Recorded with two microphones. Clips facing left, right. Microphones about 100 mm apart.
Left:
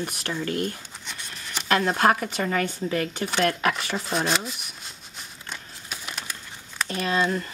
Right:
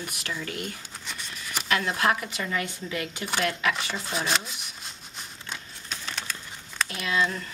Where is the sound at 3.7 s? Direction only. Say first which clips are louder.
Left 3 dB; centre (ahead or behind).